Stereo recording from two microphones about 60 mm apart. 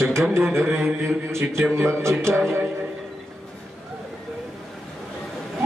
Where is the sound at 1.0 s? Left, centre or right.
Right.